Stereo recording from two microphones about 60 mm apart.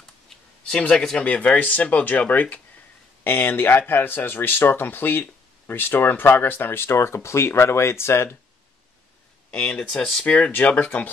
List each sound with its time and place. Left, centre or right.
0.3 s a sound: centre
1.1 s speech: left
9.5 s speech: centre